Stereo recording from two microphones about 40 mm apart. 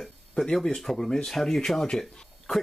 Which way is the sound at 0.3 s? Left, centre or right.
Centre.